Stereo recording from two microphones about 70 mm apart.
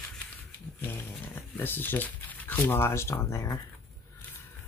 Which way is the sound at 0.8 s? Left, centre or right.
Left.